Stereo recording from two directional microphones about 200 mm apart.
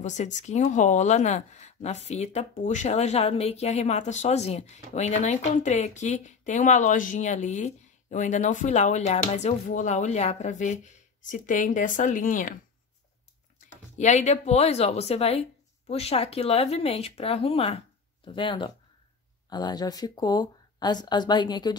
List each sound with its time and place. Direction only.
0.0 s speech: 35° left (ahead or behind)
13.6 s speech: 35° left (ahead or behind)